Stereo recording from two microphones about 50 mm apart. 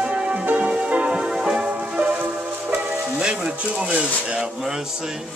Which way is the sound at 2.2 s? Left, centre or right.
Right.